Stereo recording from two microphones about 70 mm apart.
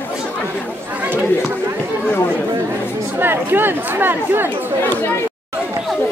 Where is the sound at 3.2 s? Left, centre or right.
Right.